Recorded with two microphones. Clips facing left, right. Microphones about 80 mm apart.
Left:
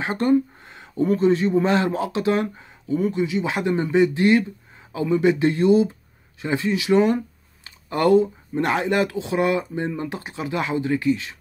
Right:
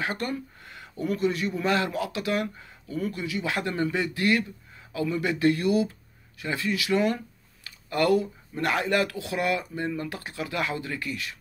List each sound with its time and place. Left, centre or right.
0.0 s speech: left